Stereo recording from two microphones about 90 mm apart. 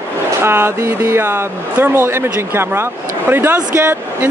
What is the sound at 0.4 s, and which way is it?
Speech, 25° right (ahead or behind).